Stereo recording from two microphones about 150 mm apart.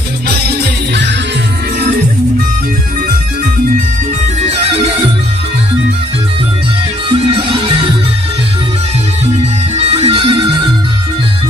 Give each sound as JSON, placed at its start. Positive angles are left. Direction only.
{"t": 7.1, "sound": "music", "side_deg": -35}
{"t": 9.9, "sound": "music", "side_deg": -40}